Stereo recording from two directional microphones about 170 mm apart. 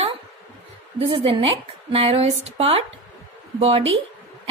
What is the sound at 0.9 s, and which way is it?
A woman's voice, 30° right (ahead or behind).